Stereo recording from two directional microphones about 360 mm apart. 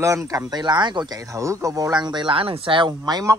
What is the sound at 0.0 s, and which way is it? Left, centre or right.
Speech, centre.